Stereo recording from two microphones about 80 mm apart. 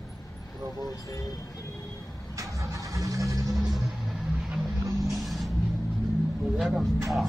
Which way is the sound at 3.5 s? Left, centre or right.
Centre.